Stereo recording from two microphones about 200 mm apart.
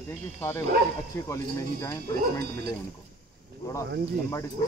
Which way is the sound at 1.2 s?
15° left (ahead or behind).